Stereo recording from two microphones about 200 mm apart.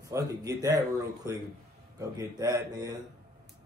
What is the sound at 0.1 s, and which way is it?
Speech, 15° right (ahead or behind).